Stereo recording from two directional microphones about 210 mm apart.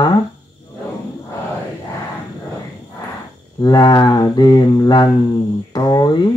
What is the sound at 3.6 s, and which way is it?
Speech, 20° left (ahead or behind).